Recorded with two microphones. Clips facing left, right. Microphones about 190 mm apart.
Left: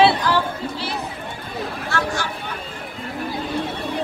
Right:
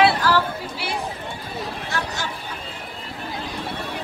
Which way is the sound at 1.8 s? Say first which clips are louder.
Left 7 dB; 20° right (ahead or behind).